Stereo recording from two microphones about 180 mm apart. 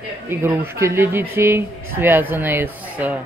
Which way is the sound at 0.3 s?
15° right (ahead or behind).